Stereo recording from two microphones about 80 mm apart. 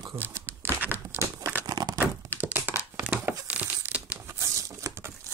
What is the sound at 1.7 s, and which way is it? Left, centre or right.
Crumpling, right.